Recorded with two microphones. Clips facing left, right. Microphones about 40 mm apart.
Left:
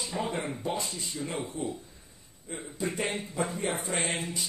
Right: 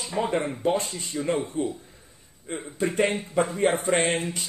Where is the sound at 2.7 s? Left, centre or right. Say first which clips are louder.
Right 8 dB; right.